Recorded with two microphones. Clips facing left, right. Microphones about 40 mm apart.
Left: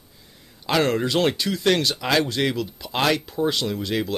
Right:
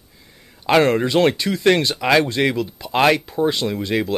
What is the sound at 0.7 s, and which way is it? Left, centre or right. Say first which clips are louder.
Speech: right 5 dB; right.